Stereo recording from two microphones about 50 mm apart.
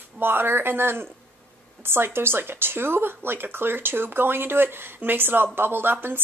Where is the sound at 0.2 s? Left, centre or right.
Right.